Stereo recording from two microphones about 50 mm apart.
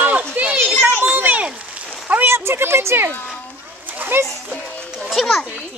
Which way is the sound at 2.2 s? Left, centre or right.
Right.